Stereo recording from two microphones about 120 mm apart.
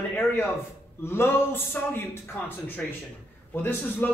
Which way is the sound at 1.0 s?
20° left (ahead or behind).